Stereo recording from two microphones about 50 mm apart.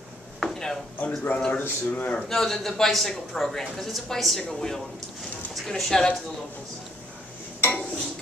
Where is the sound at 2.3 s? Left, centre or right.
Centre.